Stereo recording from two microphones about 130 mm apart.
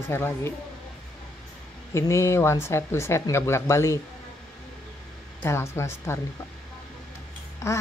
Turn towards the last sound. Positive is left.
turn(degrees=20)  # may be behind; listen again after turning